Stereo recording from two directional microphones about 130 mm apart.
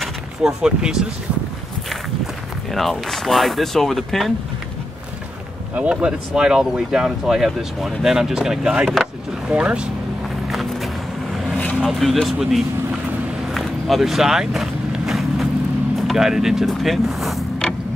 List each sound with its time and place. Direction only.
0.0 s speech: 5° right (ahead or behind)
2.7 s speech: centre (ahead or behind)
5.8 s speech: 10° right (ahead or behind)
10.5 s a sound: centre (ahead or behind)
11.8 s speech: centre (ahead or behind)
13.5 s vehicle: centre (ahead or behind)
16.1 s speech: 5° right (ahead or behind)